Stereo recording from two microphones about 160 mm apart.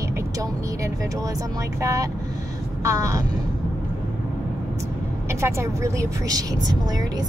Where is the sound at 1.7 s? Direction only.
20° right (ahead or behind).